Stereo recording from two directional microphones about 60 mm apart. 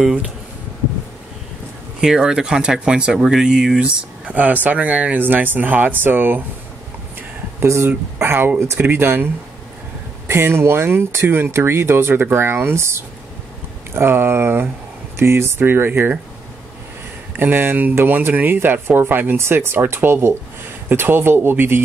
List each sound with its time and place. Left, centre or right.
2.0 s speech: centre
4.3 s speech: right
7.6 s speech: right
8.2 s speech: right
17.4 s speech: right
19.3 s speech: right